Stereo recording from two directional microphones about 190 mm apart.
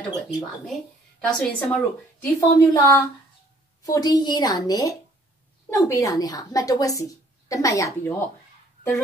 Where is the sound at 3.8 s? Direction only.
20° left (ahead or behind).